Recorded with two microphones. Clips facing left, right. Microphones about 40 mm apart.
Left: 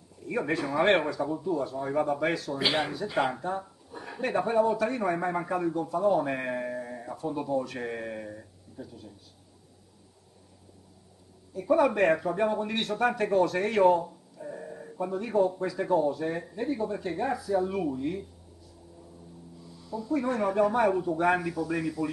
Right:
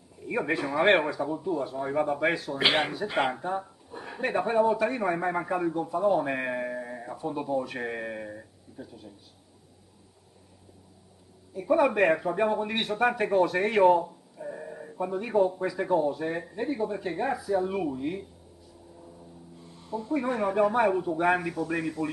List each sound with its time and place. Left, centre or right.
0.2 s speech: centre
2.6 s speech: right
3.3 s speech: centre
11.5 s speech: centre
19.6 s a sound: right
20.1 s speech: centre